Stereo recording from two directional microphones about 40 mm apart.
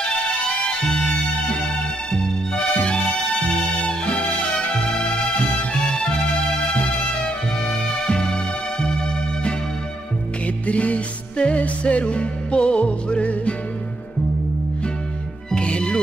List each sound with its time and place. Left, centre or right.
0.8 s music: centre
2.5 s music: left
3.0 s music: centre
4.0 s music: left
8.1 s music: centre
10.4 s music: left
11.3 s music: left
15.5 s music: left